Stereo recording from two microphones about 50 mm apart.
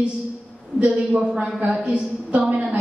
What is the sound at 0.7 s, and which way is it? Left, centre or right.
A man's voice, right.